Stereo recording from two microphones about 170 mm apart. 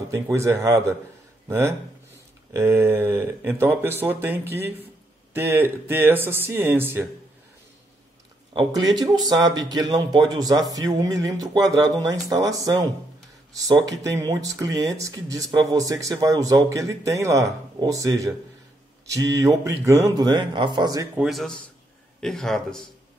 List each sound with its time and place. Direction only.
0.1 s speech: 20° right (ahead or behind)
8.5 s a man's voice: 25° right (ahead or behind)
21.2 s a man's voice: centre (ahead or behind)